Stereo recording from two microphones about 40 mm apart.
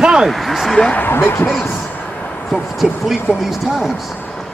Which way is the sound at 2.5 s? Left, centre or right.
Centre.